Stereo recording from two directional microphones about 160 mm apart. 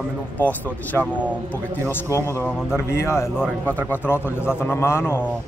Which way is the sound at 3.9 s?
15° left (ahead or behind).